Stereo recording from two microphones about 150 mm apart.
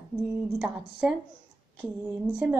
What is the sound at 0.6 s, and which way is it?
Speech, 5° right (ahead or behind).